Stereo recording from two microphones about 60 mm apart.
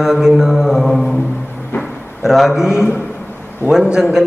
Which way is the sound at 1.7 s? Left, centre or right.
Left.